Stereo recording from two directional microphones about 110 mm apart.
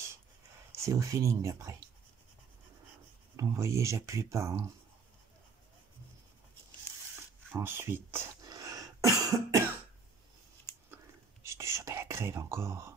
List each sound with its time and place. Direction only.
0.7 s speech: 30° right (ahead or behind)
3.3 s speech: 30° right (ahead or behind)
6.9 s a sound: 25° left (ahead or behind)
7.5 s speech: 20° right (ahead or behind)
8.5 s cough: 35° right (ahead or behind)
11.4 s whispering: 25° right (ahead or behind)